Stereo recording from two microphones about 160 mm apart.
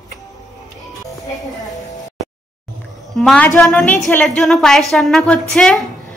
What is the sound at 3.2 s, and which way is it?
A woman's voice, 5° left (ahead or behind).